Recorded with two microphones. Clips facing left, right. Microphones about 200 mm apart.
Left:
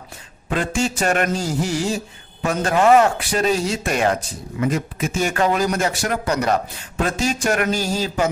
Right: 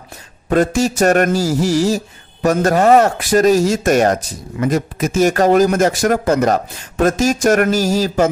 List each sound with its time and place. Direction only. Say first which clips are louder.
0.5 s speech: right 7 dB; 40° right (ahead or behind)
1.3 s a sound: right 7 dB; 75° right (ahead or behind)
1.7 s speech: right 7 dB; 40° right (ahead or behind)